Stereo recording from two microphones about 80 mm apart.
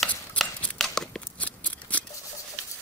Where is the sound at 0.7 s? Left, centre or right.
Centre.